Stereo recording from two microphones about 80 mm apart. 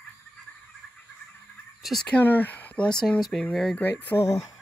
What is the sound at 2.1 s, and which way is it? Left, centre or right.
Speech, left.